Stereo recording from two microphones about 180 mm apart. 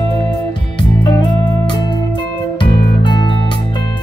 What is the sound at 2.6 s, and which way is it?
Music, 25° left (ahead or behind).